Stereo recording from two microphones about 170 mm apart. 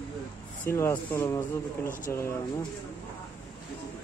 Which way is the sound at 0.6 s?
15° left (ahead or behind).